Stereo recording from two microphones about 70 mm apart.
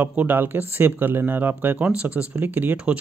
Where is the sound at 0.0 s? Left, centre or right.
Right.